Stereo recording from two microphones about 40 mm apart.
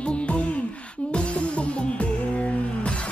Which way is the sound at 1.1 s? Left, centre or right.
Left.